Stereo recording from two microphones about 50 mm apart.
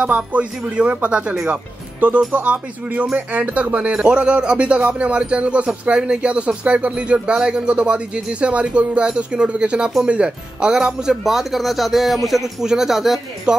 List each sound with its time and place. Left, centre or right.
0.0 s speech: right; by 13.2 s centre
13.5 s speech: centre